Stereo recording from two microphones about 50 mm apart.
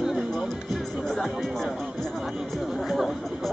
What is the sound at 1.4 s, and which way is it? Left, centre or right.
Speech, centre.